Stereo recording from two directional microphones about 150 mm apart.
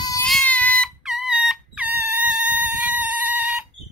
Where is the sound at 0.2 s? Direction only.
5° left (ahead or behind).